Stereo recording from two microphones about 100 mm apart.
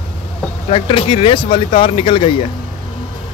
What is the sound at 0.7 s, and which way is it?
Speech, 75° left (ahead or behind).